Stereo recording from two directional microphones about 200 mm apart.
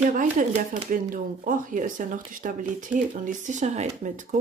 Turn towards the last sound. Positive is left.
turn(degrees=-35)  # may be behind; listen again after turning